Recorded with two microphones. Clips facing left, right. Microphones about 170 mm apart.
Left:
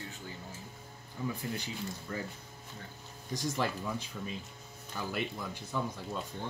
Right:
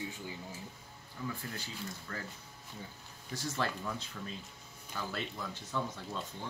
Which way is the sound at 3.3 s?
15° left (ahead or behind).